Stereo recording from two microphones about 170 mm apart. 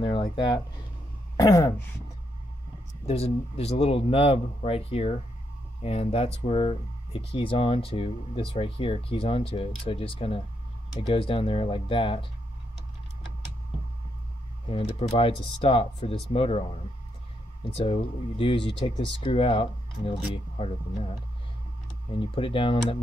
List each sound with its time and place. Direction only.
0.0 s speech: 25° left (ahead or behind)
1.3 s throat clearing: 20° left (ahead or behind)
3.1 s speech: 35° left (ahead or behind)
14.7 s speech: 35° left (ahead or behind)
17.6 s speech: 30° left (ahead or behind)